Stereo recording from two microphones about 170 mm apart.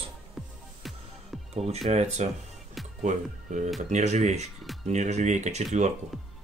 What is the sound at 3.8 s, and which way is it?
Speech, 40° right (ahead or behind).